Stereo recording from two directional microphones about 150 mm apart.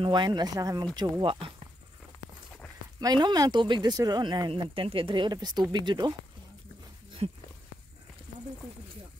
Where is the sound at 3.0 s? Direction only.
30° right (ahead or behind).